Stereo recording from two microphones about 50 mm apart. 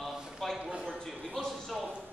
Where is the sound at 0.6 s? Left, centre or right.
Right.